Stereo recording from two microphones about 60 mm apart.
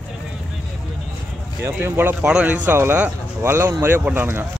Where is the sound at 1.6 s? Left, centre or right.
Right.